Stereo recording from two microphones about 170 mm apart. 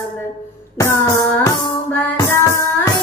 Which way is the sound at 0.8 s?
15° left (ahead or behind).